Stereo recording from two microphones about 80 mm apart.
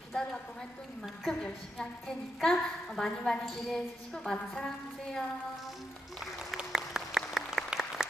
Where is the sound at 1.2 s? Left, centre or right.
Centre.